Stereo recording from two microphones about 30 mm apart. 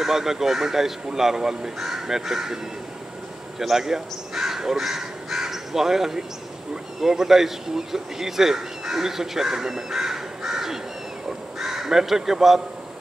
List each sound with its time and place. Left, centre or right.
0.0 s speech: centre
3.7 s speech: centre
4.4 s crow: centre
5.4 s speech: centre